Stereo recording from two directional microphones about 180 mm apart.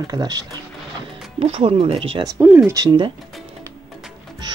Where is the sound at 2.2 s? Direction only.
10° right (ahead or behind).